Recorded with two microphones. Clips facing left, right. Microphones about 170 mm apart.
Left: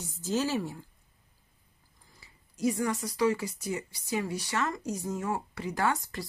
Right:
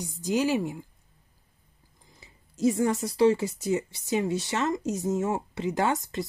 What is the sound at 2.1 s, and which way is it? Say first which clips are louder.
Speech: right 6 dB; 20° right (ahead or behind).